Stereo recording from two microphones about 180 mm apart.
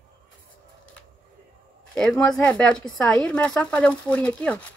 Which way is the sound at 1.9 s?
5° left (ahead or behind).